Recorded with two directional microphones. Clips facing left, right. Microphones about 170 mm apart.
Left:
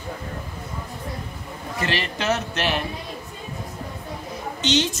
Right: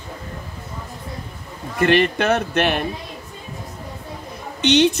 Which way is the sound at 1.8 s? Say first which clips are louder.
Right 10 dB; 55° right (ahead or behind).